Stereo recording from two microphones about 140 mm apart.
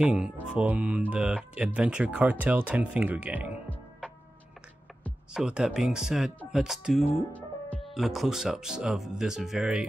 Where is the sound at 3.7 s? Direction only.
10° left (ahead or behind).